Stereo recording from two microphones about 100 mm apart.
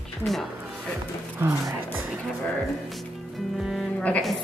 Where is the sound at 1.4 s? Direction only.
25° right (ahead or behind).